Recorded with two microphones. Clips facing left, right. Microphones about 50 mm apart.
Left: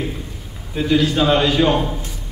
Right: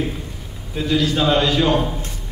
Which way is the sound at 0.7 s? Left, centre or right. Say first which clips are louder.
Left 2 dB; centre.